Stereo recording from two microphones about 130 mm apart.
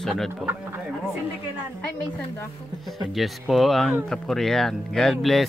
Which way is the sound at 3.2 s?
Centre (ahead or behind).